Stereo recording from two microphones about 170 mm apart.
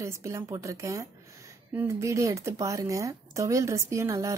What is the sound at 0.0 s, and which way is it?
Speech, 15° right (ahead or behind).